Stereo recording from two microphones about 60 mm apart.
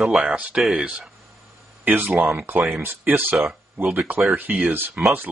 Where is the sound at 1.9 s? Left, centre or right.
Right.